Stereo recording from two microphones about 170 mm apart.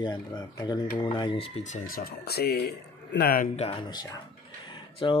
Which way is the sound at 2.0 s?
65° left (ahead or behind).